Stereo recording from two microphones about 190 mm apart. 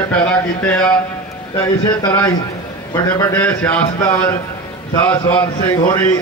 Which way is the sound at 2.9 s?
20° left (ahead or behind).